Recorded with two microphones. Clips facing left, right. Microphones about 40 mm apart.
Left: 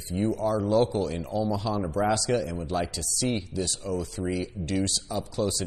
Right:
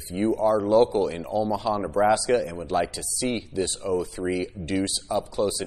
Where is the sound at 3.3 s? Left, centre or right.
Right.